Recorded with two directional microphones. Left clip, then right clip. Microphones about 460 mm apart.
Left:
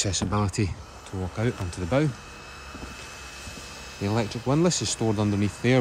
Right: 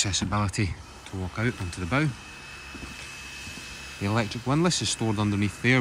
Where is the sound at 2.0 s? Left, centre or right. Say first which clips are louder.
Left 1 dB; centre.